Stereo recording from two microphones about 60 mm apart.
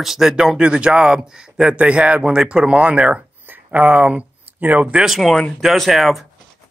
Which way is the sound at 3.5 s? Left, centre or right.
Right.